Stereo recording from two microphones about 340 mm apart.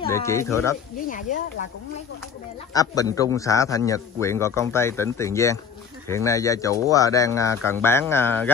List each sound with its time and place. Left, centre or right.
0.1 s a man's voice: centre
0.9 s speech: left
2.7 s a man's voice: centre